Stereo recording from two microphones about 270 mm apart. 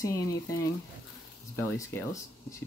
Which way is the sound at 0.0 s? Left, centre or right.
Centre.